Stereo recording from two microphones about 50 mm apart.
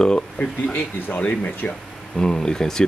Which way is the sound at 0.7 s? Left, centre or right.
Left.